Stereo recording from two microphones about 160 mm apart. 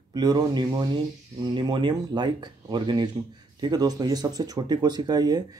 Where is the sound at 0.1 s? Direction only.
25° right (ahead or behind).